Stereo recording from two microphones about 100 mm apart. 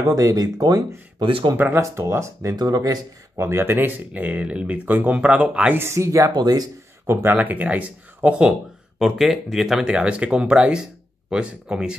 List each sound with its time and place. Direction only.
0.1 s speech: 35° right (ahead or behind)
1.2 s speech: 55° right (ahead or behind)
1.8 s speech: 30° right (ahead or behind)
2.5 s speech: 40° right (ahead or behind)
3.4 s speech: 20° right (ahead or behind)
5.8 s speech: 30° right (ahead or behind)
7.1 s speech: 25° right (ahead or behind)
7.3 s speech: 15° right (ahead or behind)